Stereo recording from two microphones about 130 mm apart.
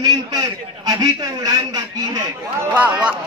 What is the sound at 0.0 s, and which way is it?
A man's voice, 30° right (ahead or behind).